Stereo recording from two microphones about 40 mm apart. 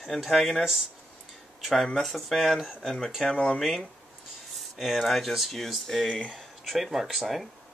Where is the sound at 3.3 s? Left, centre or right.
Left.